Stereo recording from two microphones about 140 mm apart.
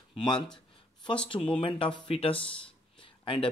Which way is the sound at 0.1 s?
35° left (ahead or behind).